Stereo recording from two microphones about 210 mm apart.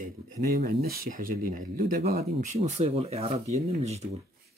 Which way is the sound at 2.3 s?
30° right (ahead or behind).